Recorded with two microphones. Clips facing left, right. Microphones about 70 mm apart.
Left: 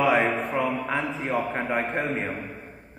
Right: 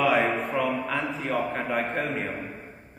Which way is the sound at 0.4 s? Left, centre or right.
Left.